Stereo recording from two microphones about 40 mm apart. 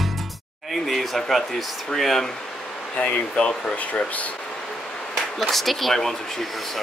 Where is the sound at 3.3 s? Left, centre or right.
Left.